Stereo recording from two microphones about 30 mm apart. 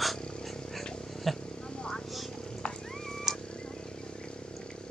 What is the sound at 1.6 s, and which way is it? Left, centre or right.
Vehicle, left.